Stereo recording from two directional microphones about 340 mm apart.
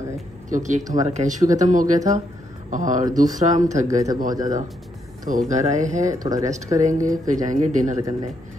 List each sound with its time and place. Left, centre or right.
0.5 s speech: right
3.8 s a man's voice: centre
4.4 s speech: right